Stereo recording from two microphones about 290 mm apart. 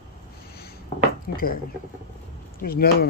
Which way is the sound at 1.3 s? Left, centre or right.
Left.